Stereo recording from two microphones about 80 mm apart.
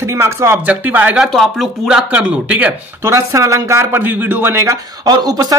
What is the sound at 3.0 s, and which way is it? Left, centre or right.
Speech, right.